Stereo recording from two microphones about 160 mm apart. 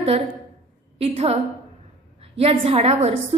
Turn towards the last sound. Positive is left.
turn(degrees=-40)  # may be behind; listen again after turning